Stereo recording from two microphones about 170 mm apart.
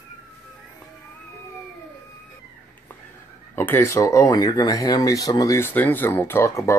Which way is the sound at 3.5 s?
15° left (ahead or behind).